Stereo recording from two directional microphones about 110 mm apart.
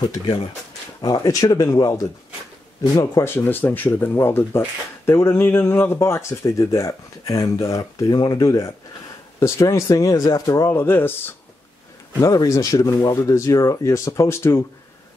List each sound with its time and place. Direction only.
0.0 s speech: 40° left (ahead or behind); by 11.3 s 20° left (ahead or behind)
12.2 s speech: 30° left (ahead or behind)